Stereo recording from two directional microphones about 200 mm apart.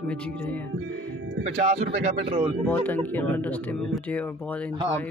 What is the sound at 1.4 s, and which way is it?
Speech, 45° right (ahead or behind).